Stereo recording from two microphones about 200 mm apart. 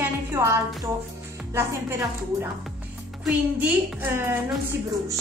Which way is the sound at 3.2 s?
10° right (ahead or behind).